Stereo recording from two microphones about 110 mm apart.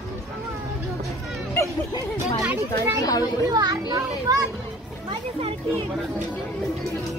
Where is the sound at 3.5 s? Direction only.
30° right (ahead or behind).